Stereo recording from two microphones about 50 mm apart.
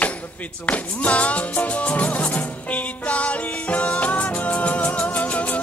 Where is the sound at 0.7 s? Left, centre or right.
Left.